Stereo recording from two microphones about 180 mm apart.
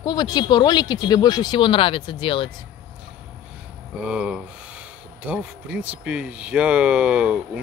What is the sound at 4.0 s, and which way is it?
Speech, 5° right (ahead or behind).